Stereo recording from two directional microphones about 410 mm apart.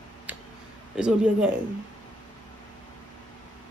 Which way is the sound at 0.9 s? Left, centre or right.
Centre.